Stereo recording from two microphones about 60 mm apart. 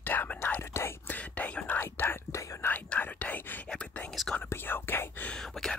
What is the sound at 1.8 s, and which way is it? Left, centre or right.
Whispering, left.